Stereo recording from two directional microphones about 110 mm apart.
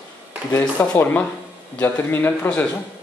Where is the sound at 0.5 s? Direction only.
20° left (ahead or behind).